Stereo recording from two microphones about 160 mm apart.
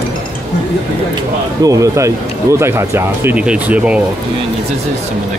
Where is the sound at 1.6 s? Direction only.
20° right (ahead or behind).